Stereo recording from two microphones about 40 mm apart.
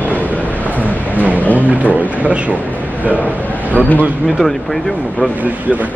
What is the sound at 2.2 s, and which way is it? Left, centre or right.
Speech, right.